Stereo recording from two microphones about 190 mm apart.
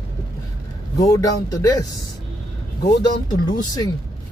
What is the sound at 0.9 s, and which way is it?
Speech, 15° left (ahead or behind).